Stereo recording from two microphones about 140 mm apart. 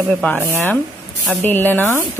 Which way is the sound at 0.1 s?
10° left (ahead or behind).